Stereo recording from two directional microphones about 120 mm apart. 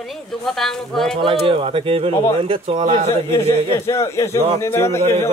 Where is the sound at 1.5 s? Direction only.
50° right (ahead or behind).